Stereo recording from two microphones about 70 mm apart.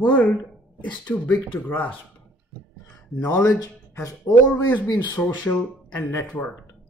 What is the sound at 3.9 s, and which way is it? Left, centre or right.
Speech, left.